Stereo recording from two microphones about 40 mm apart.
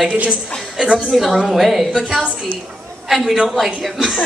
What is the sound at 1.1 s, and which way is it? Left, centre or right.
A man's voice, centre.